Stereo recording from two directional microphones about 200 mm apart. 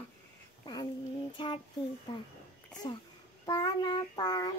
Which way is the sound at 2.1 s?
25° left (ahead or behind).